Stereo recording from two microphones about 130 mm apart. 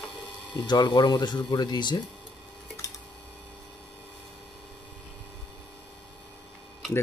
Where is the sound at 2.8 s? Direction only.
25° left (ahead or behind).